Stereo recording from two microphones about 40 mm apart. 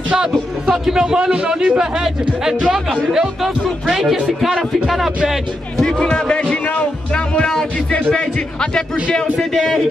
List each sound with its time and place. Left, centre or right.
0.1 s a man's voice: centre
1.8 s speech: centre
5.9 s speech: centre
7.2 s music: left
8.1 s a man's voice: left